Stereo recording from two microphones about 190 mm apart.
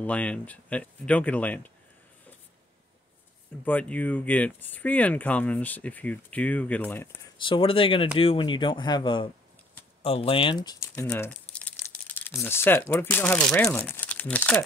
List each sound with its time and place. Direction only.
0.0 s speech: 5° left (ahead or behind)
3.6 s speech: 10° left (ahead or behind)
7.3 s speech: 25° left (ahead or behind); by 14.6 s 5° left (ahead or behind)